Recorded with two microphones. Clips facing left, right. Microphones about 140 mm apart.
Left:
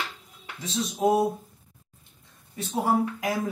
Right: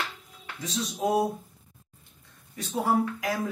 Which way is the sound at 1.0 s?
25° left (ahead or behind).